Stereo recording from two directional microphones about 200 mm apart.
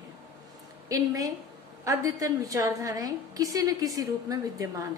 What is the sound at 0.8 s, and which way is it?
A woman's voice, 15° right (ahead or behind).